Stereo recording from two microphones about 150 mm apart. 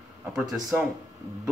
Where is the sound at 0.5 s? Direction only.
5° right (ahead or behind).